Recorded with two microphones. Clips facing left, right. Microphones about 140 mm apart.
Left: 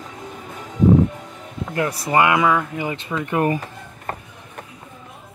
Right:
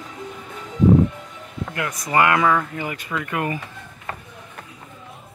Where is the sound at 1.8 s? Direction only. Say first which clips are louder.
Left 2 dB; 30° left (ahead or behind); by 2.9 s 10° left (ahead or behind).